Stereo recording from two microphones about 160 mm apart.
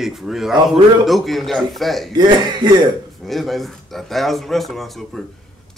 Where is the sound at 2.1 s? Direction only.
25° right (ahead or behind).